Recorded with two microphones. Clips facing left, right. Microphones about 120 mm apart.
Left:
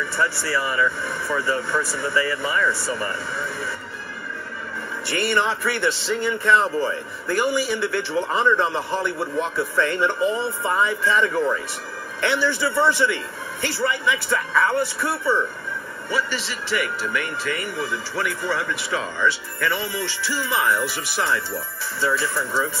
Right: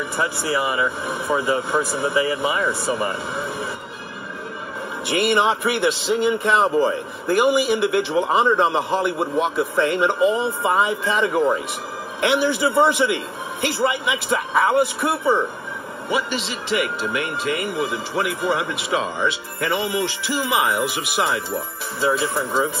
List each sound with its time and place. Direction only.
0.0 s speech: 20° right (ahead or behind)
5.0 s speech: 20° right (ahead or behind)